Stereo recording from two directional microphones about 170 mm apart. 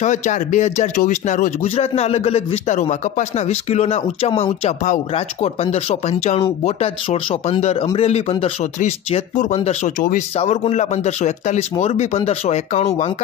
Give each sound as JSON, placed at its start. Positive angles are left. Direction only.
{"t": 0.0, "sound": "speech", "side_deg": 45}
{"t": 10.3, "sound": "speech", "side_deg": 35}